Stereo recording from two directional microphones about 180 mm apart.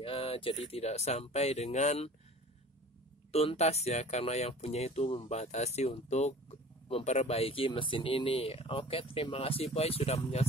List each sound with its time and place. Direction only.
0.0 s speech: 30° left (ahead or behind)
3.3 s speech: 35° left (ahead or behind)